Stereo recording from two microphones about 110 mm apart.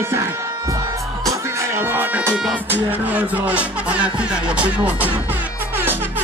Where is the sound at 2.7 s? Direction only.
15° right (ahead or behind).